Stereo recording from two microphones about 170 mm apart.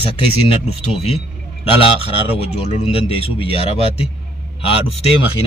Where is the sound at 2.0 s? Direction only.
35° left (ahead or behind).